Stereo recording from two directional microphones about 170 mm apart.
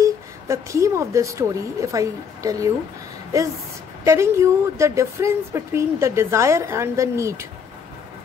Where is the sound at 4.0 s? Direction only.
15° right (ahead or behind).